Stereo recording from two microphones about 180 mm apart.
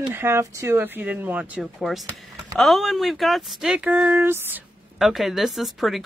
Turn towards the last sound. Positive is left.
turn(degrees=0)  # may be behind; listen again after turning